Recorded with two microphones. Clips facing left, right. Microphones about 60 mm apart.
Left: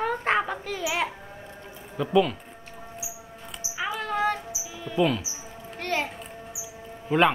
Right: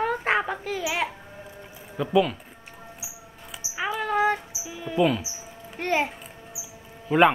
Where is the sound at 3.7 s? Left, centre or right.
Centre.